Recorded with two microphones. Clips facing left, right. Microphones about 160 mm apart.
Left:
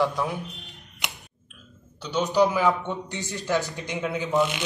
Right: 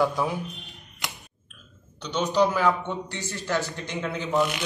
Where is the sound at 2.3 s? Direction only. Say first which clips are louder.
Left 1 dB; 15° left (ahead or behind).